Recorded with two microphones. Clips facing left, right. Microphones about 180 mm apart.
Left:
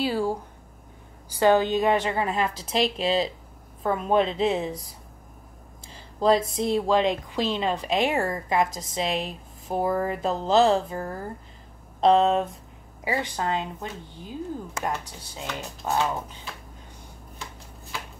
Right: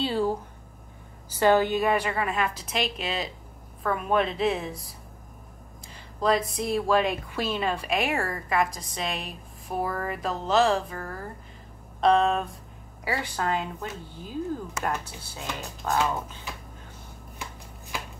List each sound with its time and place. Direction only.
0.0 s a sound: 10° left (ahead or behind)
1.4 s speech: 15° left (ahead or behind)
6.1 s speech: 25° left (ahead or behind)